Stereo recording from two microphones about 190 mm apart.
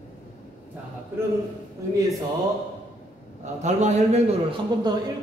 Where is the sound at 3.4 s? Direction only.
35° right (ahead or behind).